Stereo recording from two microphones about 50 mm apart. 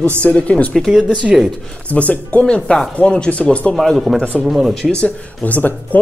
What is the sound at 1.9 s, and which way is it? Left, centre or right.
Speech, left.